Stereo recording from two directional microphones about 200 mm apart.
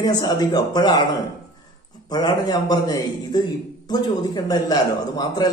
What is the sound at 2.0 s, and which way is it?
A man's voice, 20° left (ahead or behind).